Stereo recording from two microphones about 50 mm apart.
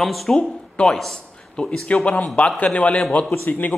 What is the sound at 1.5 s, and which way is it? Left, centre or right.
Speech, left.